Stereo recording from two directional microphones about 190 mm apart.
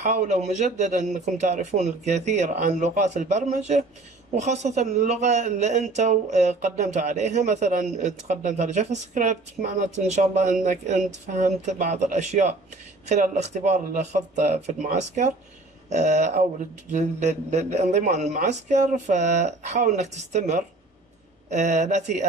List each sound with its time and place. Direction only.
0.0 s a man's voice: 40° right (ahead or behind)